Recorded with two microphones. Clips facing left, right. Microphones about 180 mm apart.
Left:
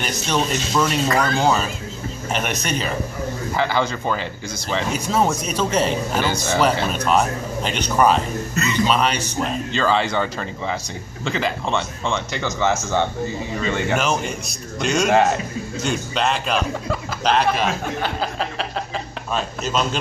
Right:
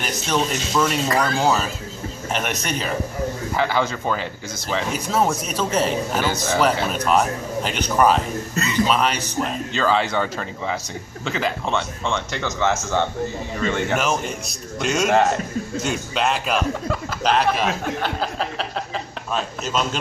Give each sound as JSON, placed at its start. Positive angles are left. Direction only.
{"t": 0.0, "sound": "speech", "side_deg": 0}
{"t": 1.0, "sound": "speech", "side_deg": -30}
{"t": 2.3, "sound": "speech", "side_deg": 0}